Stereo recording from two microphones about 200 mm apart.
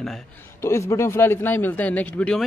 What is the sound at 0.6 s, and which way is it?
A man's voice, 15° left (ahead or behind).